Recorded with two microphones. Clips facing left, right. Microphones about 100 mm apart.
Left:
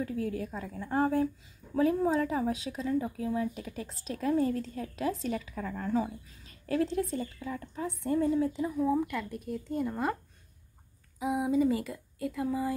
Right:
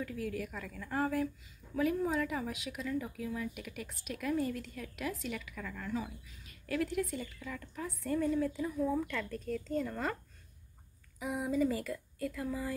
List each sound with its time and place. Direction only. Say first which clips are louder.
0.0 s speech: left 5 dB; 30° left (ahead or behind)
11.1 s speech: left 5 dB; 20° left (ahead or behind)